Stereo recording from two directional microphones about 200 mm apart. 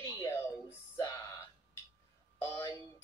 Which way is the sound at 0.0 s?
15° left (ahead or behind).